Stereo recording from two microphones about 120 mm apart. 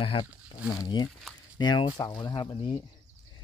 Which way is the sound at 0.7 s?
35° left (ahead or behind).